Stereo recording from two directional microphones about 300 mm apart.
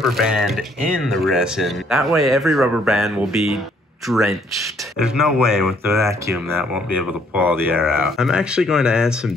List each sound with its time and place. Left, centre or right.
0.0 s speech: centre